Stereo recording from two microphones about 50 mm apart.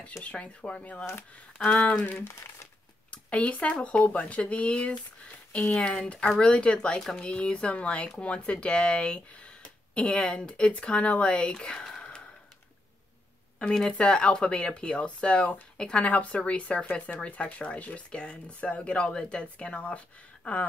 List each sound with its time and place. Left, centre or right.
0.2 s speech: left
2.2 s speech: left
3.1 s a sound: left
3.8 s speech: left
6.1 s speech: centre
6.4 s speech: left
13.6 s speech: centre